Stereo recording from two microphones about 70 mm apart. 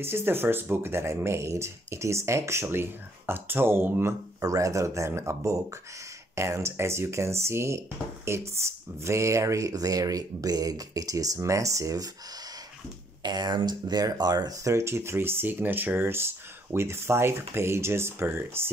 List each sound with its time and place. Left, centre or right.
0.0 s speech: right
4.4 s speech: right
13.2 s speech: right
14.6 s speech: right